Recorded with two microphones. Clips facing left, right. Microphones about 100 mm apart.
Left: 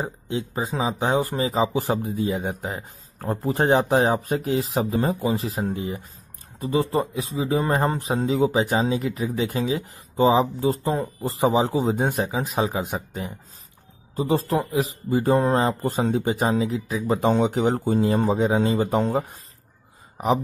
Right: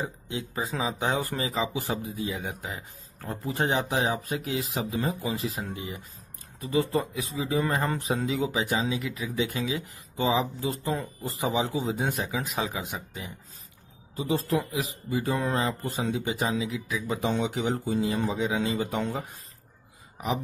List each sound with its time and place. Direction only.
0.0 s a man's voice: 30° left (ahead or behind)
12.8 s a man's voice: 45° left (ahead or behind)